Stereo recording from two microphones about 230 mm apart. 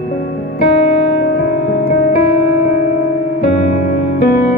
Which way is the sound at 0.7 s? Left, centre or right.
Left.